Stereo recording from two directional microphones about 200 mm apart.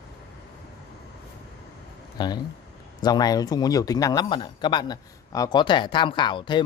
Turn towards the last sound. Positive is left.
turn(degrees=25)  # may be behind; listen again after turning